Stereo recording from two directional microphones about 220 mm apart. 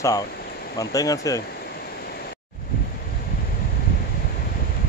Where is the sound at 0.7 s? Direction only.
15° left (ahead or behind).